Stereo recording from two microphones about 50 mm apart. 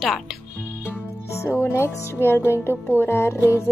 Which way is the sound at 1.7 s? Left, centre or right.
Left.